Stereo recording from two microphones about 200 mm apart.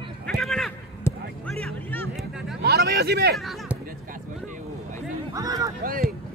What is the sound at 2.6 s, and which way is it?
Hubbub, 55° right (ahead or behind).